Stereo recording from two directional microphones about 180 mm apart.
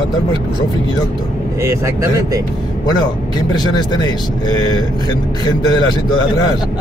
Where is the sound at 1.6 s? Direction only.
15° right (ahead or behind).